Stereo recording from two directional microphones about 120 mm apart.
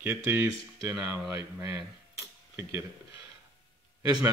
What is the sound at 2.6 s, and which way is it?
Speech, 20° right (ahead or behind).